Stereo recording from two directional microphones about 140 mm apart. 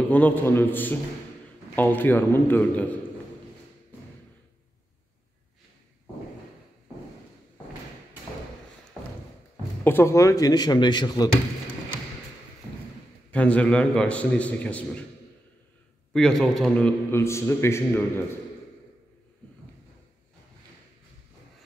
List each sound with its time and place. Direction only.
0.1 s a man's voice: 15° left (ahead or behind)
9.8 s a man's voice: 15° left (ahead or behind)
13.3 s a man's voice: 10° left (ahead or behind)
16.1 s a man's voice: 5° left (ahead or behind)
17.1 s a man's voice: 20° left (ahead or behind)